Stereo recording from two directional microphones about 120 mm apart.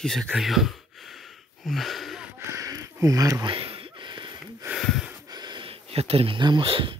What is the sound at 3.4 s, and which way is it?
Gasp, 45° right (ahead or behind).